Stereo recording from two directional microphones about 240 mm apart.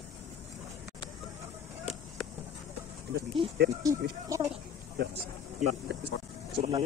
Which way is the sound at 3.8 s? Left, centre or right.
Centre.